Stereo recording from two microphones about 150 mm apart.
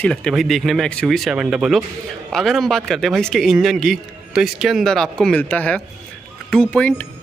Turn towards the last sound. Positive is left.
turn(degrees=5)  # may be behind; listen again after turning